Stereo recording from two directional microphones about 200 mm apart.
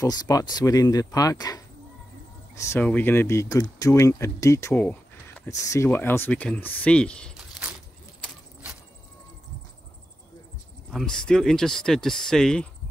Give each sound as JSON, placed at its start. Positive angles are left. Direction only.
{"t": 0.0, "sound": "speech", "side_deg": 20}
{"t": 10.9, "sound": "speech", "side_deg": 0}